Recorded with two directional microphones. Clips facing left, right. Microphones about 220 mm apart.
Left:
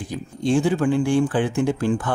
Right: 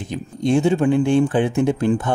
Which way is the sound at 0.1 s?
20° right (ahead or behind).